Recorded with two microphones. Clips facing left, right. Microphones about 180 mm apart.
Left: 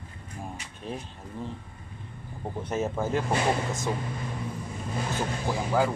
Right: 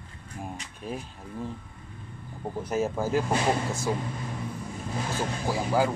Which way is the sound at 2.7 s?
10° right (ahead or behind).